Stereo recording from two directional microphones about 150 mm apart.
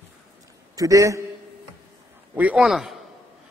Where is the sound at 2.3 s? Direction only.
10° right (ahead or behind).